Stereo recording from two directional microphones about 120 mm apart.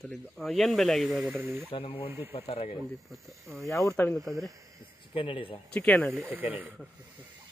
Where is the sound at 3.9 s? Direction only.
15° left (ahead or behind).